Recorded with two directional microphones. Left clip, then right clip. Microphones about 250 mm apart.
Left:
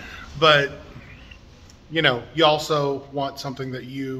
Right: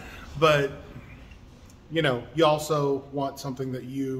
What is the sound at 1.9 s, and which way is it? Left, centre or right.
A man's voice, centre.